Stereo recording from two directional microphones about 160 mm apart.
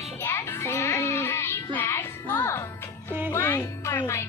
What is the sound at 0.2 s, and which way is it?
Music, 15° left (ahead or behind).